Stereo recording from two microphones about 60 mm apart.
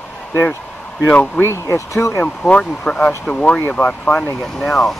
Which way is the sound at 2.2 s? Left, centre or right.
Centre.